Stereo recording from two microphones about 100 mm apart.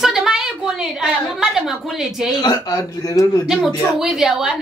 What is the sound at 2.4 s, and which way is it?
Speech, 35° left (ahead or behind).